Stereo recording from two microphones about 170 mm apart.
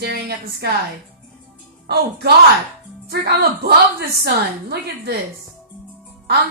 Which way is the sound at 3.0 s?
70° right (ahead or behind).